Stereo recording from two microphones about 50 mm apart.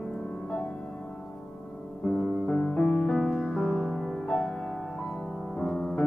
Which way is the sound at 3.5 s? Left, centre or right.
Left.